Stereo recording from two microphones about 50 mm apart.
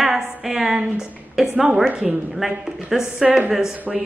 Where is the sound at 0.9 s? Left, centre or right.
Centre.